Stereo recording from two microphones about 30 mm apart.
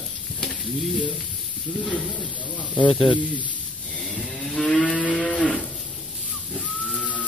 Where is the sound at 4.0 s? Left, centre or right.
Centre.